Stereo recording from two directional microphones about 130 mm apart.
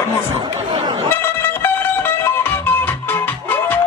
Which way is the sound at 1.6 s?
15° left (ahead or behind).